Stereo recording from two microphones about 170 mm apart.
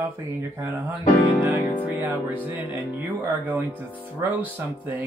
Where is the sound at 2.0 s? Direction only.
10° right (ahead or behind).